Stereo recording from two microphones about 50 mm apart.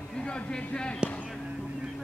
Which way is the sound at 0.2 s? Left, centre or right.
Centre.